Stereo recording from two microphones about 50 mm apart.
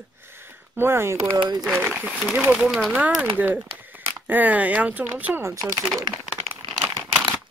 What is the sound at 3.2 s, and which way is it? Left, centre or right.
Speech, right.